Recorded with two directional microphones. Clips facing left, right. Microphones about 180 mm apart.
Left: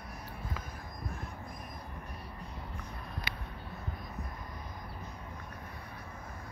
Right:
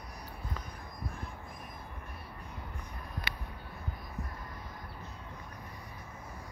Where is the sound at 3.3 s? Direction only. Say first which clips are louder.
Right 1 dB; 65° right (ahead or behind).